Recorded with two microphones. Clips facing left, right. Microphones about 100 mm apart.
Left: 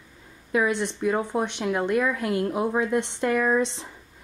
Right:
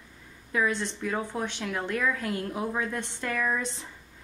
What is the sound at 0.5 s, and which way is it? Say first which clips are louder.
A woman's voice: left 4 dB; 20° left (ahead or behind).